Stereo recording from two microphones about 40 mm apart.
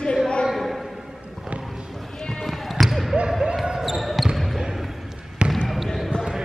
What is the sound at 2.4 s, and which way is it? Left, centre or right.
Basketball bounce, centre.